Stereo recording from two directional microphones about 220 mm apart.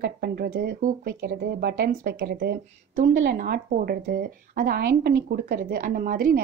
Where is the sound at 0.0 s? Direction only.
45° right (ahead or behind).